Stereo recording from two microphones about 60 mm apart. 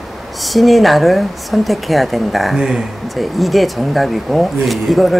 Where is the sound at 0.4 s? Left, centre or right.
Centre.